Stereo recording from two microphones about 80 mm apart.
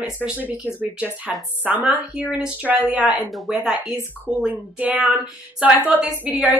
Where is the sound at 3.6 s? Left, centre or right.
Centre.